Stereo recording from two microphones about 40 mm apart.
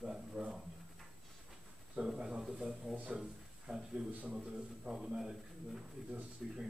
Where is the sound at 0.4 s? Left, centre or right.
Right.